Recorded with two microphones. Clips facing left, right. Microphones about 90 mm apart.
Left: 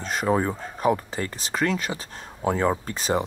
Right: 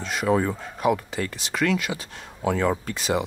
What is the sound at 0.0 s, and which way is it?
Speech, 40° left (ahead or behind).